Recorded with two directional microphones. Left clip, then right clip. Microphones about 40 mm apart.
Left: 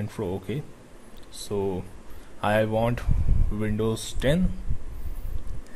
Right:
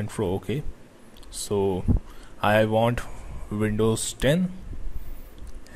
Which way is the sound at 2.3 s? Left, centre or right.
Centre.